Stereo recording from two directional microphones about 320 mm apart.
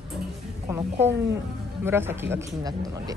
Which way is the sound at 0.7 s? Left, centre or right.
Centre.